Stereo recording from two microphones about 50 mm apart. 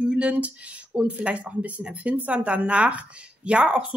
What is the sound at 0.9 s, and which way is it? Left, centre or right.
Speech, right.